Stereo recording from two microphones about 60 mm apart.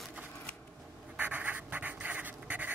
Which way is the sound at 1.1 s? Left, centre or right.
Right.